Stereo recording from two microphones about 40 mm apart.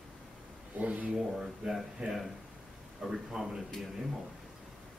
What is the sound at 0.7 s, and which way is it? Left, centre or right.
Speech, right.